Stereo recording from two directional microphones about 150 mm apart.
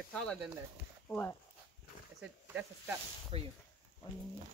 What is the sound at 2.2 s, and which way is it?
Speech, 10° right (ahead or behind).